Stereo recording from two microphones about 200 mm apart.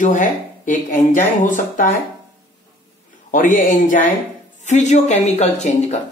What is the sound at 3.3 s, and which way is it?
Speech, 40° left (ahead or behind).